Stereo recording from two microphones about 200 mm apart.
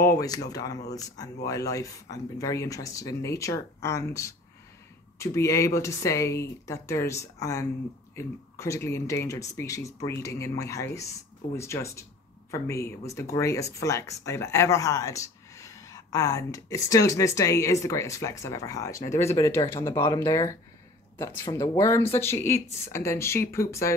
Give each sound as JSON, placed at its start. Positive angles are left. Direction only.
{"t": 0.2, "sound": "speech", "side_deg": 20}